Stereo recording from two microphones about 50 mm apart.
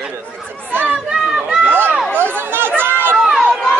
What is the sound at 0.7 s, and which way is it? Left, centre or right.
Chatter, right.